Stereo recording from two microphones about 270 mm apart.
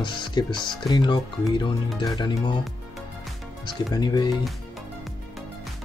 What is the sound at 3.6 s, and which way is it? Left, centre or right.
Speech, centre.